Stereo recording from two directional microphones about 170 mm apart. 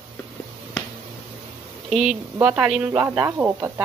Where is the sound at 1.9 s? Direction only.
Centre (ahead or behind).